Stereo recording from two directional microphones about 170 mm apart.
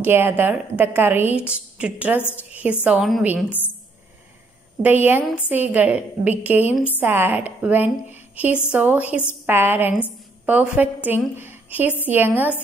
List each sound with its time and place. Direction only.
0.0 s a woman's voice: 10° right (ahead or behind)
2.1 s a woman's voice: 10° left (ahead or behind)
2.5 s a woman's voice: 10° right (ahead or behind)
3.4 s a woman's voice: 10° left (ahead or behind)
4.8 s a woman's voice: 10° right (ahead or behind)